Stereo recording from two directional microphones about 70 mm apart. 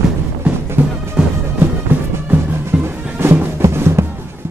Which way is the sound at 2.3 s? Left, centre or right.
Right.